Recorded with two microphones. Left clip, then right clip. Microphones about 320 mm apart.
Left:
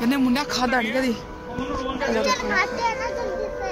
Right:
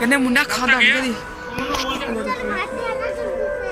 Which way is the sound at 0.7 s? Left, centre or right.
Left.